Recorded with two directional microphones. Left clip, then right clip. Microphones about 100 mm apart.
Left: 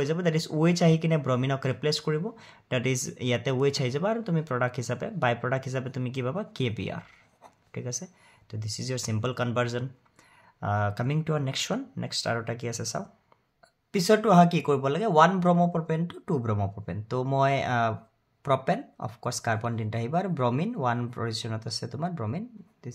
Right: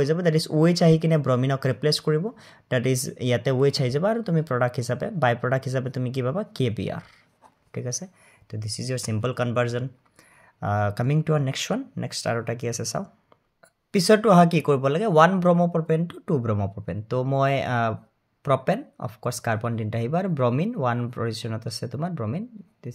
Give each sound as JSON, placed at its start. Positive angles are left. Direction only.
{"t": 0.0, "sound": "speech", "side_deg": -30}